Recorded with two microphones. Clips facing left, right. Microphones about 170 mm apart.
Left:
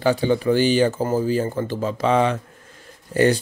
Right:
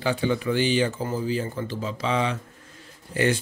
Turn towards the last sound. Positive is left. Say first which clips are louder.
# left 6 dB
turn(degrees=40)  # may be behind; listen again after turning